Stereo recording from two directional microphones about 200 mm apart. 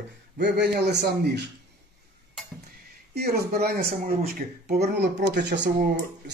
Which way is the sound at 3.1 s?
50° right (ahead or behind).